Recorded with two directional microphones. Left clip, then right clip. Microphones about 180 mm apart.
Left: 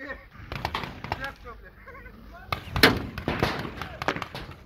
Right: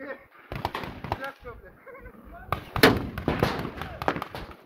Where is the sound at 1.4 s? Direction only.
55° right (ahead or behind).